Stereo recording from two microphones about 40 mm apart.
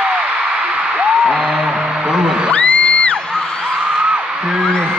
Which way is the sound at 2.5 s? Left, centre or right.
Left.